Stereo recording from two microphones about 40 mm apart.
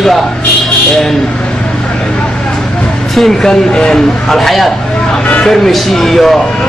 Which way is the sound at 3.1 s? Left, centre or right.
Centre.